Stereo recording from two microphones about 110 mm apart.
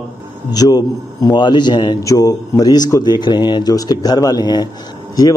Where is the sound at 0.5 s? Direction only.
35° left (ahead or behind).